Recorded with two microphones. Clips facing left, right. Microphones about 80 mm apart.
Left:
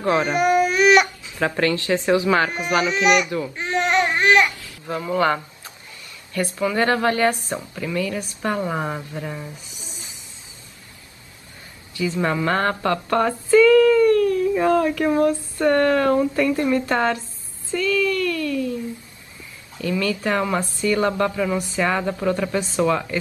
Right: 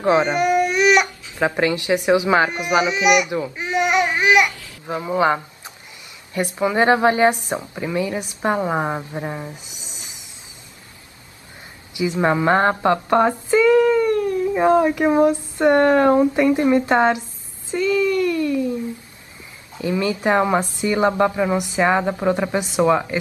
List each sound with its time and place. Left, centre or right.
0.2 s speech: centre
1.4 s speech: centre
3.3 s a woman's voice: right
3.5 s babbling: centre
6.3 s a woman's voice: right
9.8 s a sound: left
11.9 s speech: centre
17.6 s a sound: right
19.8 s a woman's voice: right